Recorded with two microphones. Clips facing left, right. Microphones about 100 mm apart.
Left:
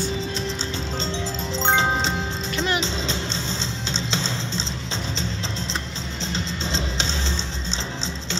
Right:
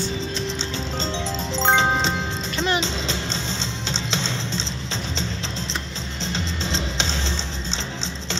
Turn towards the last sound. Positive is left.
turn(degrees=0)  # may be behind; listen again after turning